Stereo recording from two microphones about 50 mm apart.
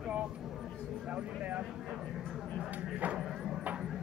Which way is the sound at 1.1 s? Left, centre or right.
Right.